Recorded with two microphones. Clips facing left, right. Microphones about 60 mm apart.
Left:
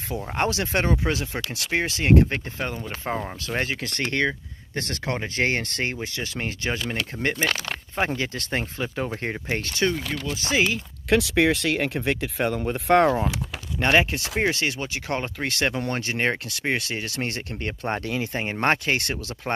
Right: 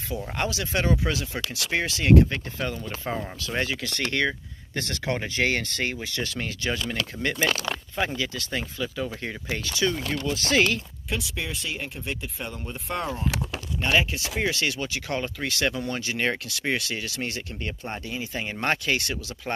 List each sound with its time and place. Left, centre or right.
0.1 s speech: left
2.7 s speech: left
5.9 s speech: centre
8.2 s speech: left
10.3 s speech: centre
11.1 s speech: left
13.7 s speech: left
14.6 s speech: left
18.3 s speech: left